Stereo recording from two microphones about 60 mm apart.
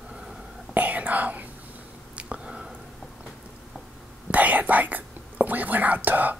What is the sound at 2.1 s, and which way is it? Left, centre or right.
Whispering, centre.